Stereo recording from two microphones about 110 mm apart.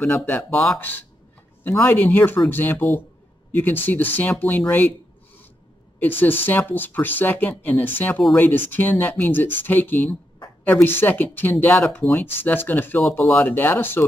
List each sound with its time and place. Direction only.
0.0 s speech: 15° left (ahead or behind)
0.5 s speech: 5° left (ahead or behind)
0.7 s speech: 15° left (ahead or behind)
5.9 s speech: 20° left (ahead or behind)